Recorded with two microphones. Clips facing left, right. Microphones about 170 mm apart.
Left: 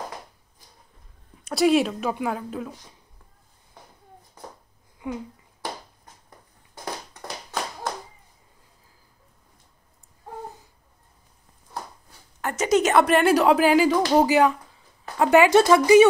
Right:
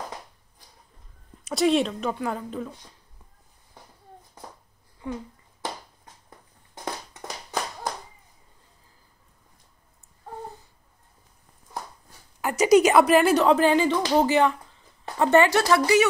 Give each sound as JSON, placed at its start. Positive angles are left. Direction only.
{"t": 1.4, "sound": "speech", "side_deg": 0}
{"t": 12.4, "sound": "speech", "side_deg": -10}